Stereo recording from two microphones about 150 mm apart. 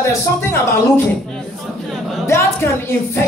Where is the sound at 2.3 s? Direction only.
15° left (ahead or behind).